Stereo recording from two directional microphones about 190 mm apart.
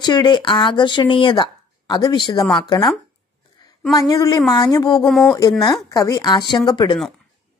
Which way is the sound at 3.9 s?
20° left (ahead or behind).